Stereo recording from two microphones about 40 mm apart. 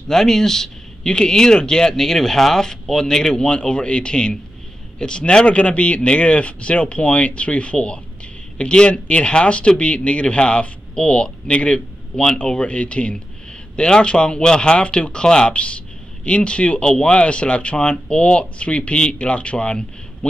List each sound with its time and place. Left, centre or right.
0.1 s speech: centre
12.5 s speech: left